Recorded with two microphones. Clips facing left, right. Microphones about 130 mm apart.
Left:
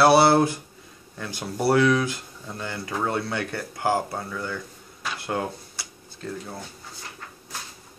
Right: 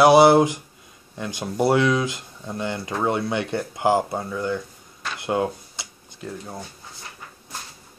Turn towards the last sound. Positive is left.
turn(degrees=-10)  # may be behind; listen again after turning